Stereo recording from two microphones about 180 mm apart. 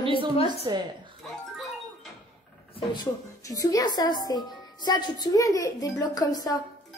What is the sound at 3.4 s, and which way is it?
A woman's voice, 20° left (ahead or behind).